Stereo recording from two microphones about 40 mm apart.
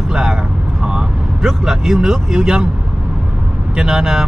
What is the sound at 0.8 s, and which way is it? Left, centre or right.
Speech, centre.